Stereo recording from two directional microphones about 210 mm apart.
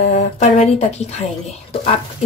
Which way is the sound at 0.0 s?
30° left (ahead or behind).